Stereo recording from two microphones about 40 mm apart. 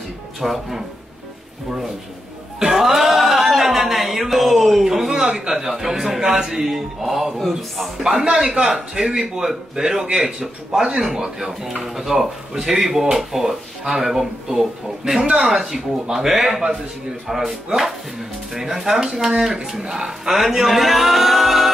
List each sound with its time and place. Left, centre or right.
0.4 s speech: centre
2.6 s a sound: centre
5.6 s speech: centre
8.0 s speech: centre